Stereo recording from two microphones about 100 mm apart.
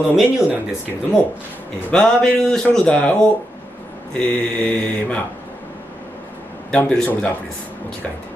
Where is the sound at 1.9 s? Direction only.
10° left (ahead or behind).